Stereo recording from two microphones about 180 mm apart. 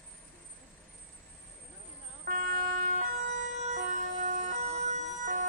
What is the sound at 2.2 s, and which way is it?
Emergency vehicle, 50° right (ahead or behind).